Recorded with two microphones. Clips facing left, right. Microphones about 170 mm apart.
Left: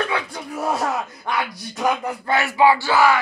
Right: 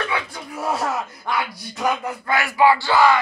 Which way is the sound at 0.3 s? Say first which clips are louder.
Left 1 dB; 15° left (ahead or behind).